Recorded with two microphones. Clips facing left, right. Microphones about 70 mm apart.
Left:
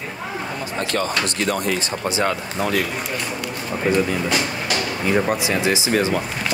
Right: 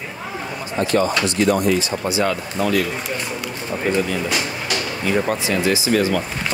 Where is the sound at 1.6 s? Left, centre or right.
Left.